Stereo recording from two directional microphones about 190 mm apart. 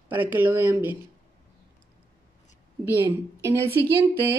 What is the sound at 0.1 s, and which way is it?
Speech, 10° right (ahead or behind).